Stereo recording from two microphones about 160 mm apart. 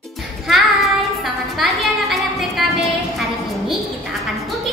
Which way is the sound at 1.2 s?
Centre (ahead or behind).